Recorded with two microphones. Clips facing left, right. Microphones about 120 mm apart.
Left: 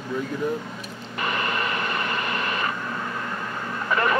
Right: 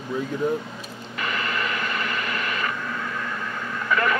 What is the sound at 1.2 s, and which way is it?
Radio, 35° left (ahead or behind).